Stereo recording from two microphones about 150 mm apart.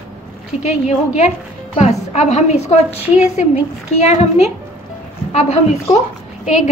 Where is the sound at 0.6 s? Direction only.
50° left (ahead or behind).